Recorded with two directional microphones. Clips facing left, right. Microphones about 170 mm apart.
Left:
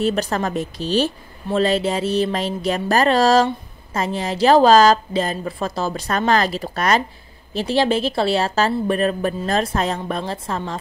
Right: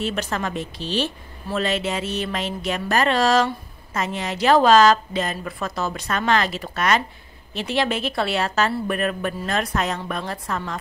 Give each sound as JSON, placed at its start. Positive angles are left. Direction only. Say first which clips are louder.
{"t": 0.0, "sound": "a woman's voice", "louder": "left 5 dB", "side_deg": 35}